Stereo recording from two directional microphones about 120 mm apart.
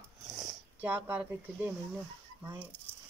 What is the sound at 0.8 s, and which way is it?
Speech, 15° right (ahead or behind).